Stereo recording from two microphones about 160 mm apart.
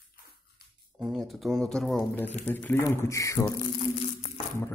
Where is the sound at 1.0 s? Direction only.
Centre (ahead or behind); by 3.5 s 20° left (ahead or behind).